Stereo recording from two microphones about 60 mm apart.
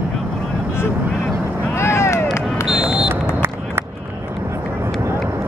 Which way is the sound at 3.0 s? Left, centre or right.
Right.